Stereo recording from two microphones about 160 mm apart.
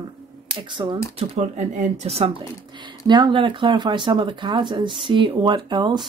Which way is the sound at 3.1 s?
30° right (ahead or behind).